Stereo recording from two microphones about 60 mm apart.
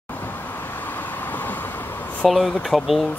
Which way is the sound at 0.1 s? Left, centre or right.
Left.